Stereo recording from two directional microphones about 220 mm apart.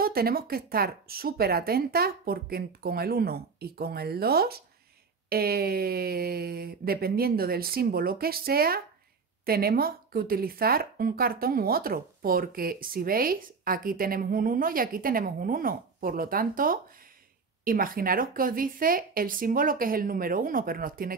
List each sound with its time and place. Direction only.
0.0 s speech: 45° right (ahead or behind)